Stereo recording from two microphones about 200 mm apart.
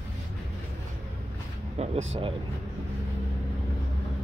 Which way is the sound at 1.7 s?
30° right (ahead or behind).